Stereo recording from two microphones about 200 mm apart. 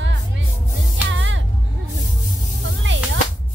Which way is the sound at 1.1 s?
65° right (ahead or behind).